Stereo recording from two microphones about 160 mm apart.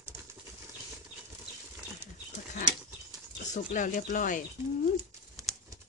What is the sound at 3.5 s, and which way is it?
Speech, 50° left (ahead or behind).